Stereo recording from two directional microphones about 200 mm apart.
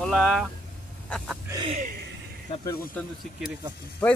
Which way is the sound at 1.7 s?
40° right (ahead or behind).